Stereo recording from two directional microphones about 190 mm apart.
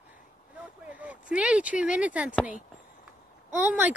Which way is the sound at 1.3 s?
5° right (ahead or behind).